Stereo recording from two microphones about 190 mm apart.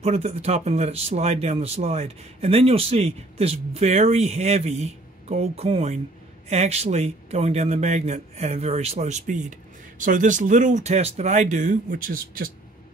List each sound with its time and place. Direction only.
0.0 s speech: 35° right (ahead or behind)